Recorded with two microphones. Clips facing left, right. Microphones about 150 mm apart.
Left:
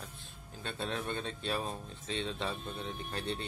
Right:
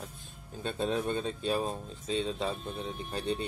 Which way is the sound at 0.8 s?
10° right (ahead or behind).